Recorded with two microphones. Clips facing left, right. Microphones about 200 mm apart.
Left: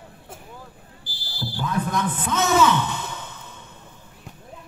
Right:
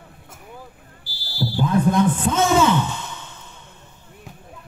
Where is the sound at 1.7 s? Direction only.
30° right (ahead or behind).